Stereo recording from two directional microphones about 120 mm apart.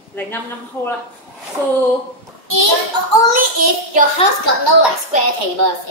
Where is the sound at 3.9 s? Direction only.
90° right.